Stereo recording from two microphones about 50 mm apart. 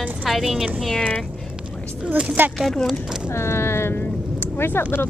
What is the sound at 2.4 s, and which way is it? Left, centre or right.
Speech, right.